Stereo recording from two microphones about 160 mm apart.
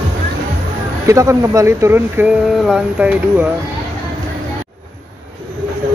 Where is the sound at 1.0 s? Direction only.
20° right (ahead or behind).